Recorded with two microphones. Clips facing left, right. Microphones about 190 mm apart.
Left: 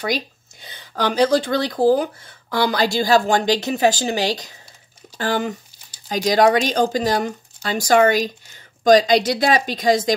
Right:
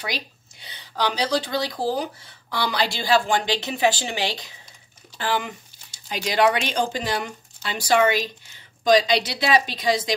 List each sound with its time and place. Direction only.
0.0 s speech: 45° left (ahead or behind)